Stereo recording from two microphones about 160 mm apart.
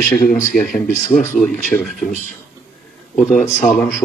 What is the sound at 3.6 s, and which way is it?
Speech, 5° left (ahead or behind).